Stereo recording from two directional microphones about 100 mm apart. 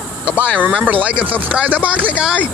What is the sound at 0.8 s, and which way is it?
Speech, 15° right (ahead or behind).